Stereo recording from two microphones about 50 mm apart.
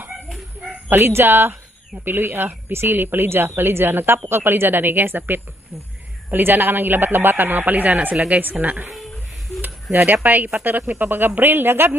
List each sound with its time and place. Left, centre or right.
0.8 s speech: right
3.4 s a woman's voice: right
10.2 s a woman's voice: right